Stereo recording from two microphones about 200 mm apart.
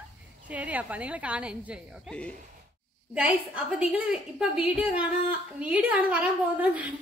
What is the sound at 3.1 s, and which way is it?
A woman's voice, 5° right (ahead or behind).